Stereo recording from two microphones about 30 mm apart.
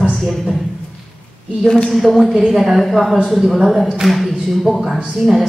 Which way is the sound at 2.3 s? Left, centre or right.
Centre.